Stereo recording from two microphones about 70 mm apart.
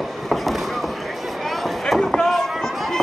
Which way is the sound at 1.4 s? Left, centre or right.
Centre.